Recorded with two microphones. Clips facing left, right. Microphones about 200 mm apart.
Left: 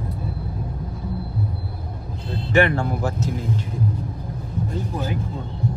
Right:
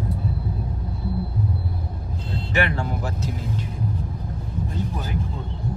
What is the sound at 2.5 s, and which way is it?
Speech, 50° left (ahead or behind).